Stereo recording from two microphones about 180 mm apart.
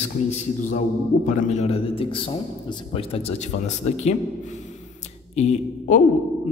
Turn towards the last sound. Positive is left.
turn(degrees=45)  # may be behind; listen again after turning